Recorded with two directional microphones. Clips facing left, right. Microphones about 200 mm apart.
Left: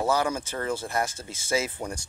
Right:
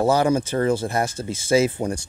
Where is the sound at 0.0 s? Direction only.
30° right (ahead or behind).